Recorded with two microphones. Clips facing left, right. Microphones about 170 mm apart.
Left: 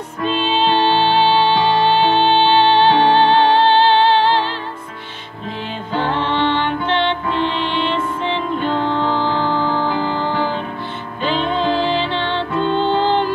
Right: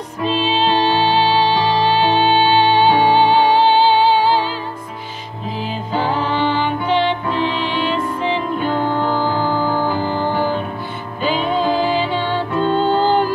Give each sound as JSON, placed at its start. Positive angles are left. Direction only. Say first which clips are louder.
{"t": 0.4, "sound": "music", "louder": "left 1 dB", "side_deg": 0}
{"t": 5.9, "sound": "music", "louder": "even", "side_deg": -5}
{"t": 12.6, "sound": "music", "louder": "right 1 dB", "side_deg": -40}